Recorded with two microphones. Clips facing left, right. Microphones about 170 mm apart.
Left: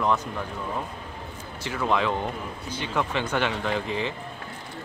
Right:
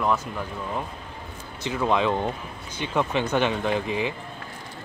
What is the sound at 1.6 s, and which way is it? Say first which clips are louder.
Speech: right 2 dB; 20° right (ahead or behind).